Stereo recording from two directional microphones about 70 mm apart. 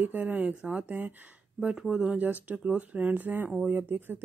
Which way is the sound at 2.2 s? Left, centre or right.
Right.